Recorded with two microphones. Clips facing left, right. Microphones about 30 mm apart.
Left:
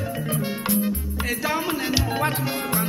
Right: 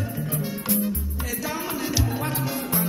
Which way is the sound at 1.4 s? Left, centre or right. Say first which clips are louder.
Left 3 dB; left.